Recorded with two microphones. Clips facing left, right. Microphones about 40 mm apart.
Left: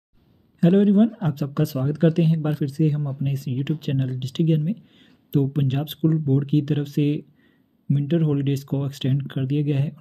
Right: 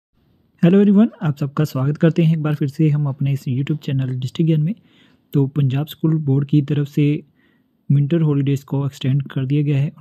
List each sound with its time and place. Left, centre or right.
0.7 s a man's voice: right
1.2 s speech: right
3.6 s speech: right
9.1 s speech: right
9.5 s speech: right